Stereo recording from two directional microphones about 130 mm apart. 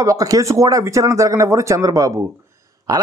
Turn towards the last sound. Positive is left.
turn(degrees=-30)  # may be behind; listen again after turning